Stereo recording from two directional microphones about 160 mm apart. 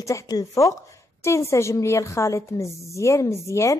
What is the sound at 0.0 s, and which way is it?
A woman's voice, 20° left (ahead or behind).